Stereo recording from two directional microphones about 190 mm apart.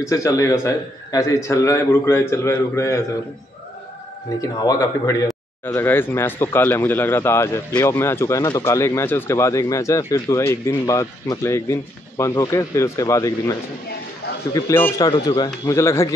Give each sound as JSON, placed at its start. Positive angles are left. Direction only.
{"t": 0.0, "sound": "speech", "side_deg": 15}
{"t": 4.4, "sound": "speech", "side_deg": 15}